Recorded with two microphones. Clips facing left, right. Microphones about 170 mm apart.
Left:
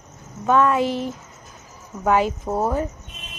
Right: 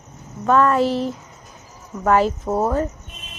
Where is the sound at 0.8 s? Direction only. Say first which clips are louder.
Right 3 dB; 30° right (ahead or behind).